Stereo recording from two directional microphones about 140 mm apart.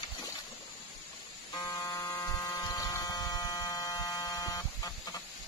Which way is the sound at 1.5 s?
25° left (ahead or behind).